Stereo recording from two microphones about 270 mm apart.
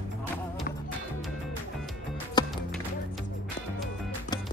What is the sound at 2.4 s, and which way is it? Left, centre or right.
Music, centre.